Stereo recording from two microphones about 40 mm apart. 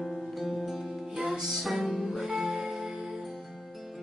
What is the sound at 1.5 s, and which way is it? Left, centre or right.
Music, centre.